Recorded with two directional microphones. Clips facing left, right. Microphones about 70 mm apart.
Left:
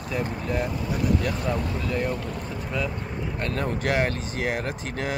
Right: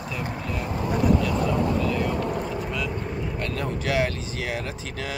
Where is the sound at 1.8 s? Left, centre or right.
Left.